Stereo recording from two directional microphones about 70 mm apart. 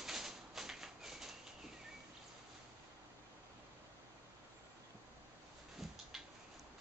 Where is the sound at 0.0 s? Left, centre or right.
Centre.